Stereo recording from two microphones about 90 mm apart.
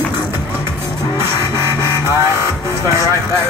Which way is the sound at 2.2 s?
30° right (ahead or behind).